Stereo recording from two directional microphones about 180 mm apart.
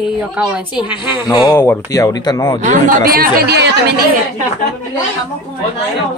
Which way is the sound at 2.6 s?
50° right (ahead or behind).